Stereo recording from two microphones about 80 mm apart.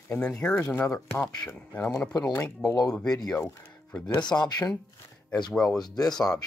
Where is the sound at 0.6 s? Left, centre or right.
Left.